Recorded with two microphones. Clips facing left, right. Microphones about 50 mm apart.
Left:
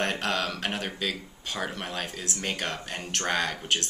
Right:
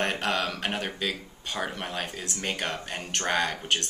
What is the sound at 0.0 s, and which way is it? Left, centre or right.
Speech, centre.